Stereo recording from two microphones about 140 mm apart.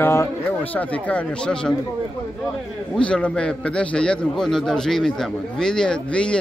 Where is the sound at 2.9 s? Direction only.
5° left (ahead or behind).